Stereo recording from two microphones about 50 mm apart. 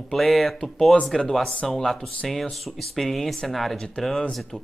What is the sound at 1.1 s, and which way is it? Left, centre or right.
Speech, centre.